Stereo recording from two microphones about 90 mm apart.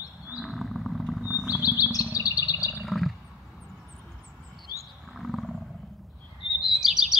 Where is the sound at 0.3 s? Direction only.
5° right (ahead or behind).